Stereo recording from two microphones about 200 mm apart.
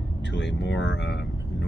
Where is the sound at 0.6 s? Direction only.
65° left (ahead or behind).